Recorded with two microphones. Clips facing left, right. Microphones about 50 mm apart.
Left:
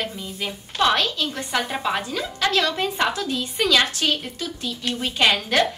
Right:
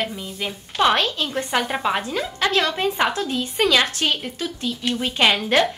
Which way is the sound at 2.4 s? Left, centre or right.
Right.